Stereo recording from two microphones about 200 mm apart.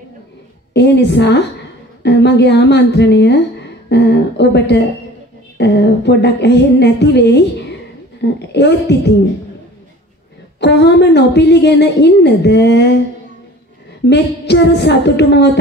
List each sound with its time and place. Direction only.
0.7 s a woman's voice: 60° left (ahead or behind)
10.6 s a woman's voice: 60° left (ahead or behind)
14.0 s a woman's voice: 60° left (ahead or behind)